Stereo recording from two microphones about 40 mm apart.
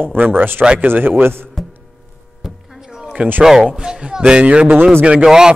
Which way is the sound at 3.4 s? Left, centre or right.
Centre.